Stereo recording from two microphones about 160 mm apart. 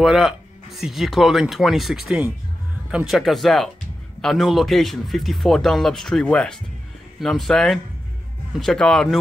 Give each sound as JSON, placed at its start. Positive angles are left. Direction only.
{"t": 0.0, "sound": "speech", "side_deg": 0}